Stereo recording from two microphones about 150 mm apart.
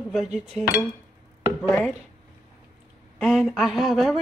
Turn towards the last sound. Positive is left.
turn(degrees=0)  # may be behind; listen again after turning